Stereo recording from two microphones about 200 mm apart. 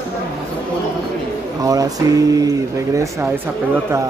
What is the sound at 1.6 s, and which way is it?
Speech, 15° right (ahead or behind).